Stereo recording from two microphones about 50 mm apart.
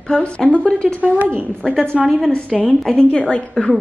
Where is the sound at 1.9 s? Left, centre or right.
Centre.